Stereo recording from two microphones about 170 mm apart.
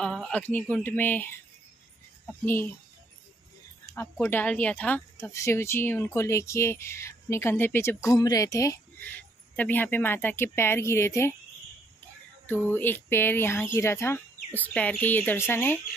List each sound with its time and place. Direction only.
0.0 s a sound: 5° right (ahead or behind)
0.3 s speech: 10° left (ahead or behind)
3.8 s speech: 15° left (ahead or behind)
12.4 s speech: 10° left (ahead or behind)